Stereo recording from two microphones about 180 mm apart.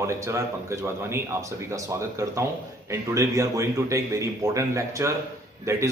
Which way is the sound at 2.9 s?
15° right (ahead or behind).